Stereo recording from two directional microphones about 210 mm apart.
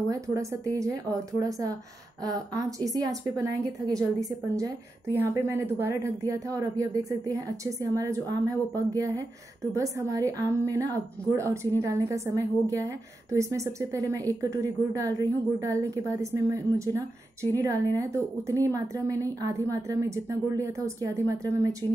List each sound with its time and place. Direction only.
0.1 s a woman's voice: 15° right (ahead or behind)